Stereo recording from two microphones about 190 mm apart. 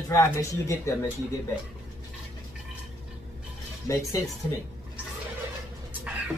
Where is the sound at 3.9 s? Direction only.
15° left (ahead or behind).